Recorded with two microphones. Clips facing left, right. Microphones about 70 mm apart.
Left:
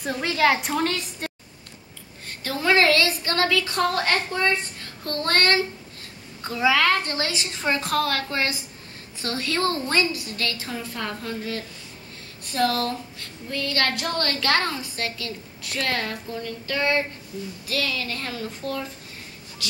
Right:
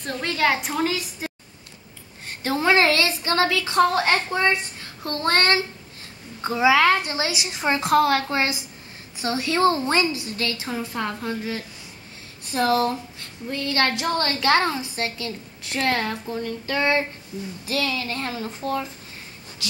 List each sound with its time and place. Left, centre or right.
0.0 s a woman's voice: centre
2.2 s speech: right